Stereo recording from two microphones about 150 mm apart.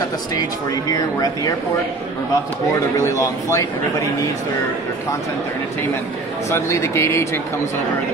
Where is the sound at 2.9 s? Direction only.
20° left (ahead or behind).